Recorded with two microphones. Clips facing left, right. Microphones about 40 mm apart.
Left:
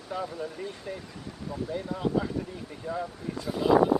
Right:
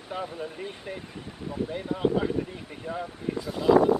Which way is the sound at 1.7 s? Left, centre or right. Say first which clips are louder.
Right 2 dB; right.